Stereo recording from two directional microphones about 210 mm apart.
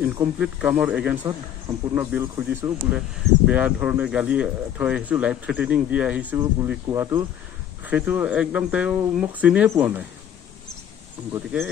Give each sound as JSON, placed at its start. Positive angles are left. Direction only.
{"t": 0.0, "sound": "speech", "side_deg": -10}